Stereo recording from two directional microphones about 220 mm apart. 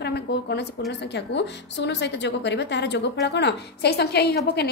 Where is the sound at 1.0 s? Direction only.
50° left (ahead or behind).